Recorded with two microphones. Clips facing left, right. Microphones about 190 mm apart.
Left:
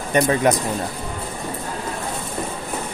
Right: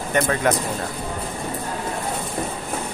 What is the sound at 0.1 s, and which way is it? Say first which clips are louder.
Speech: left 3 dB; 20° left (ahead or behind).